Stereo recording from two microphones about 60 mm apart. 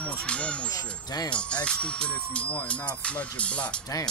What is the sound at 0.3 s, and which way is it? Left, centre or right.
Music, centre.